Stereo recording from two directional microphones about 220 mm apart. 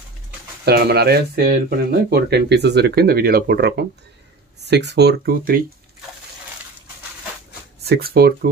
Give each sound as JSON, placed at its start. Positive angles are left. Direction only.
{"t": 0.7, "sound": "speech", "side_deg": -45}
{"t": 7.8, "sound": "speech", "side_deg": -45}